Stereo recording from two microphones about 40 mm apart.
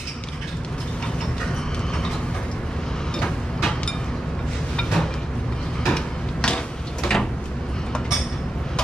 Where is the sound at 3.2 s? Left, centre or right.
Left.